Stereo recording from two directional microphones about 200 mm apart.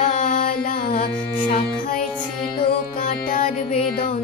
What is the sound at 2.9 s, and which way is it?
Music, 40° left (ahead or behind).